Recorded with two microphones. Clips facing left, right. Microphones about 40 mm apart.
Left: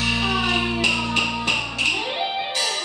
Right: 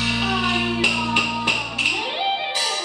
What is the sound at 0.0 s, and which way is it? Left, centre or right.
Music, centre.